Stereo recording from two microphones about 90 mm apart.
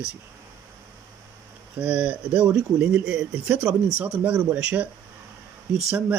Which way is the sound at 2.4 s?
25° right (ahead or behind).